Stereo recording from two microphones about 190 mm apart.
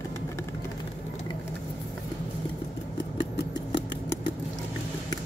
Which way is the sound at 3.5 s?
20° left (ahead or behind).